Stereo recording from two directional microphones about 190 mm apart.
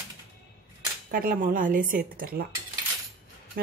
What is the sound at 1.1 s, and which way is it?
Speech, 50° right (ahead or behind).